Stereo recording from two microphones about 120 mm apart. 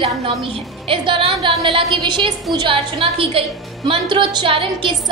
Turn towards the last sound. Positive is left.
turn(degrees=-45)  # may be behind; listen again after turning